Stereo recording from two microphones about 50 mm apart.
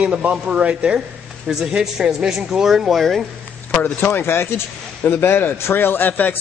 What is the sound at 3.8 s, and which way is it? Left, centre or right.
A man's voice, left.